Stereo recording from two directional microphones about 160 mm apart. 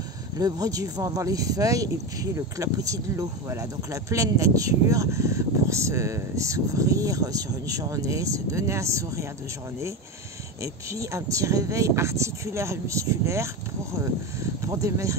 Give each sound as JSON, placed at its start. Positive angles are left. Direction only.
{"t": 0.4, "sound": "speech", "side_deg": -20}
{"t": 10.6, "sound": "speech", "side_deg": -20}
{"t": 14.6, "sound": "speech", "side_deg": -20}